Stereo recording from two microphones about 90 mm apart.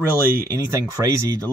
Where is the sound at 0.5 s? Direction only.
35° right (ahead or behind).